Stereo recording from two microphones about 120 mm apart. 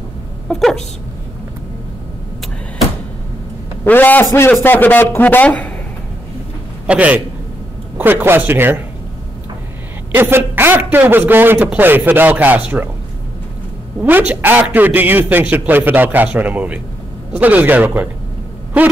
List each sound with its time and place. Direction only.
0.5 s speech: 5° left (ahead or behind)
3.8 s a man's voice: 15° left (ahead or behind)
6.9 s a man's voice: 10° right (ahead or behind)
10.1 s a man's voice: 15° right (ahead or behind)
14.0 s a man's voice: 15° right (ahead or behind)